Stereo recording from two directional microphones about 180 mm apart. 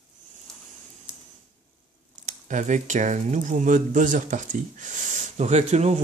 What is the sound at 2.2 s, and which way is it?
Speech, 45° right (ahead or behind).